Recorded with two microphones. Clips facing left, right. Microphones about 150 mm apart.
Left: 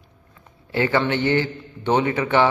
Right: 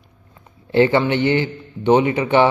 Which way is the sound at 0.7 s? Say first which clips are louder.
Right 5 dB; 20° right (ahead or behind).